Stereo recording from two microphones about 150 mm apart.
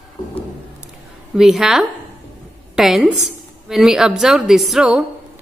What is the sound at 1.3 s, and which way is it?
A woman's voice, 5° right (ahead or behind).